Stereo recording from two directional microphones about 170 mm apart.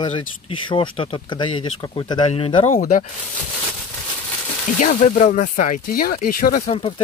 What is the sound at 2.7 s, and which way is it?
Speech, 50° left (ahead or behind).